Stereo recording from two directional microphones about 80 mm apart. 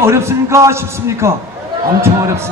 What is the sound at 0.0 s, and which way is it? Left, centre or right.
A man's voice, right.